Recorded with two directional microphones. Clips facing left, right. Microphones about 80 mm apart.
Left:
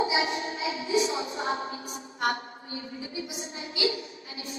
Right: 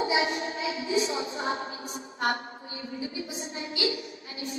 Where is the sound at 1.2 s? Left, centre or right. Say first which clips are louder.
Even; right.